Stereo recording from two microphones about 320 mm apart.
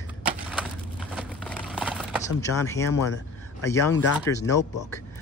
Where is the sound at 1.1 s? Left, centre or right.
Centre.